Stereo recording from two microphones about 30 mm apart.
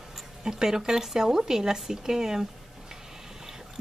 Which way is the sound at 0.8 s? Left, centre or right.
Centre.